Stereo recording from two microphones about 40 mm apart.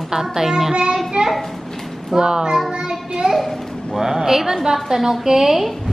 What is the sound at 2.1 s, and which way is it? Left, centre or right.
Speech, centre.